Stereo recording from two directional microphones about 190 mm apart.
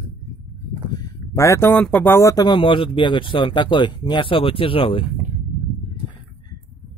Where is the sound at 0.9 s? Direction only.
20° left (ahead or behind).